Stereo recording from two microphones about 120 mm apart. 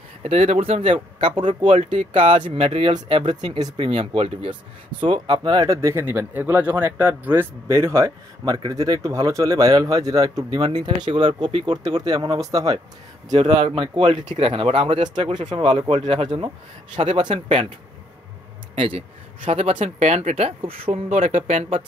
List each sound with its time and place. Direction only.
0.2 s speech: 65° right (ahead or behind); by 1.6 s 45° right (ahead or behind)
1.7 s speech: 65° right (ahead or behind)
2.1 s speech: 45° right (ahead or behind)
5.8 s speech: 25° right (ahead or behind)
8.5 s speech: 35° right (ahead or behind)
13.4 s speech: 50° right (ahead or behind)
18.8 s speech: 50° right (ahead or behind); by 21.7 s 65° right (ahead or behind)